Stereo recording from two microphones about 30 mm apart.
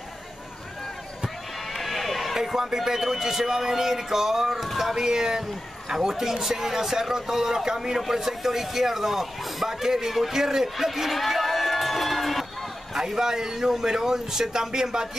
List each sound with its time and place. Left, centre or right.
1.7 s run: centre
2.3 s speech: centre
10.9 s crowd: centre
12.9 s speech: centre